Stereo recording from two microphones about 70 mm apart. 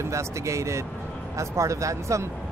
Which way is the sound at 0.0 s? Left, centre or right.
Right.